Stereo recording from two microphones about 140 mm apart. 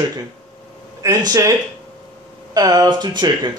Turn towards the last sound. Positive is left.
turn(degrees=-30)  # may be behind; listen again after turning